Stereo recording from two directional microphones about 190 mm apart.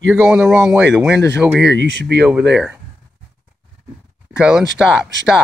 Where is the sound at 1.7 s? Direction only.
65° right (ahead or behind).